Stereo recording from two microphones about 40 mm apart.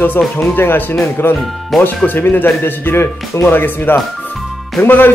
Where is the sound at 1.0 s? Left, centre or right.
Left.